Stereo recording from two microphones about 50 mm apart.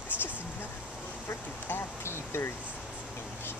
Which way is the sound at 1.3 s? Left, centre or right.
Left.